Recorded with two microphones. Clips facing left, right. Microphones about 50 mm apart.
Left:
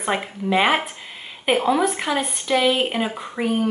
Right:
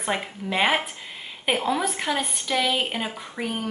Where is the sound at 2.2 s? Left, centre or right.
Left.